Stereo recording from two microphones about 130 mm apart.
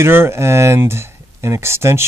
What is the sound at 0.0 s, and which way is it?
Speech, 20° right (ahead or behind).